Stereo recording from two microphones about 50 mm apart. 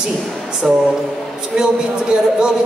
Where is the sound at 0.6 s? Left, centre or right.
Centre.